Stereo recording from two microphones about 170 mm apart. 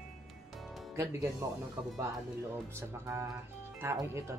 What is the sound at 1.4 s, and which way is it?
Speech, 20° right (ahead or behind).